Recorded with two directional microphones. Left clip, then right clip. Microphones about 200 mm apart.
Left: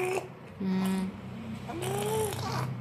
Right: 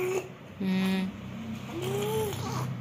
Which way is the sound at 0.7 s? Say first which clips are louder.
Right 2 dB; 5° left (ahead or behind).